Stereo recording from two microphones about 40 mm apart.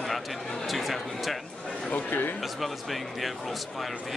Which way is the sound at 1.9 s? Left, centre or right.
Left.